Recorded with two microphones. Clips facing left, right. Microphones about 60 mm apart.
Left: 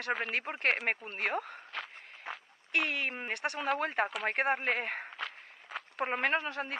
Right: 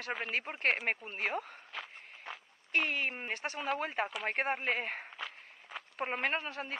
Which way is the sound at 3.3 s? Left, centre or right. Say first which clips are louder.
Left 6 dB; centre.